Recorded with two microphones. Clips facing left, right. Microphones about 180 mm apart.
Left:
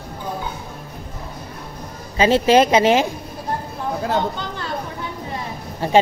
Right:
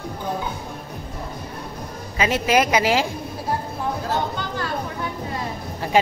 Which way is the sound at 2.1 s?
30° left (ahead or behind).